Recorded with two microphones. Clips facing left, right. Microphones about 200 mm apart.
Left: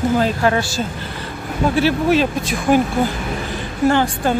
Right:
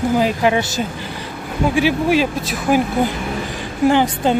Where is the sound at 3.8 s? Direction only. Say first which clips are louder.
Right 1 dB; 15° right (ahead or behind).